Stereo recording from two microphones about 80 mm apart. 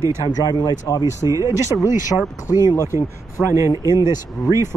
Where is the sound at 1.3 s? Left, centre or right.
Right.